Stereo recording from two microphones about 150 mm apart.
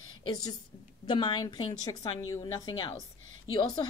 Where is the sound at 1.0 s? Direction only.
30° left (ahead or behind).